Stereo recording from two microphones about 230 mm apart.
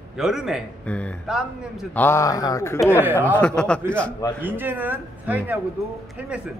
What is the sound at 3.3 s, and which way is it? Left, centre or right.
Speech, centre.